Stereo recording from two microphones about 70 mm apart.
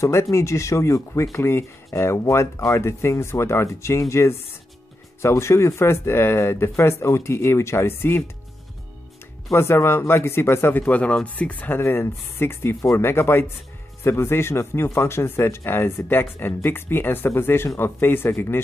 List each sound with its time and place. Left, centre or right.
0.0 s speech: left
9.5 s speech: left
10.8 s speech: centre
11.8 s speech: left